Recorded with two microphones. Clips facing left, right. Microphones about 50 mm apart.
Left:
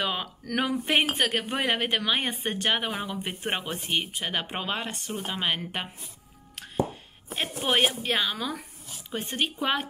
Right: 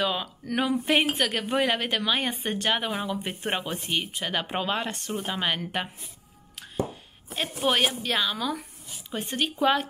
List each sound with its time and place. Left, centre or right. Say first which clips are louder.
0.0 s speech: right 2 dB; left
7.3 s speech: right 1 dB; left